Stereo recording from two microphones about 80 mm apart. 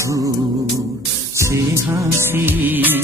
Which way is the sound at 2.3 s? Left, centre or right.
Right.